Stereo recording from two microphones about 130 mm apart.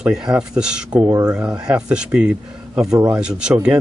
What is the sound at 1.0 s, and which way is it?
Speech, 25° right (ahead or behind).